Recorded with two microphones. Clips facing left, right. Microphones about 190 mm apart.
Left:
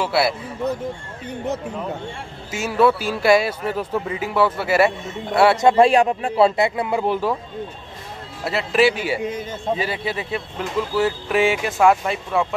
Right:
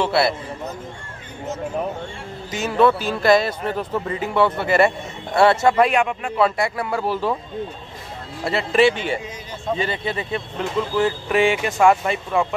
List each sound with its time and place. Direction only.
0.0 s speech: 5° left (ahead or behind)
2.5 s speech: 5° left (ahead or behind)
5.7 s speech: 30° left (ahead or behind); by 7.3 s 15° left (ahead or behind)
8.5 s speech: centre (ahead or behind)